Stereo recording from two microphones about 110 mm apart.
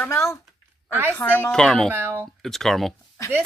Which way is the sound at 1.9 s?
20° right (ahead or behind).